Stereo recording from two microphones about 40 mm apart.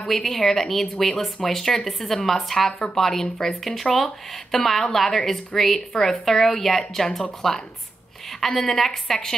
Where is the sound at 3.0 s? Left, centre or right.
Centre.